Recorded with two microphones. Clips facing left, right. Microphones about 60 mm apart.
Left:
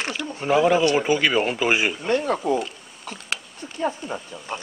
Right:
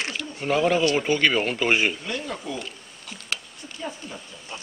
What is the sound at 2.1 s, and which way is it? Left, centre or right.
Speech, left.